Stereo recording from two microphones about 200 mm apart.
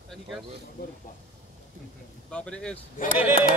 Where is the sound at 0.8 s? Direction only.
50° left (ahead or behind).